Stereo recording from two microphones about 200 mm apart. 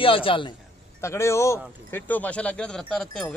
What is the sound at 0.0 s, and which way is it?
Speech, 25° left (ahead or behind).